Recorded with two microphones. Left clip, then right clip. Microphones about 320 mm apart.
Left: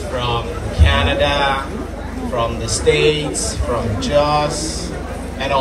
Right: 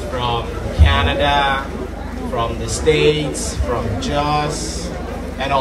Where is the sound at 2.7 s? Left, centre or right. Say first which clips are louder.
Even; right.